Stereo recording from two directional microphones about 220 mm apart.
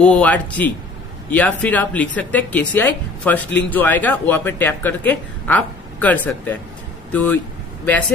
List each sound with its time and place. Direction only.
0.0 s speech: 5° left (ahead or behind)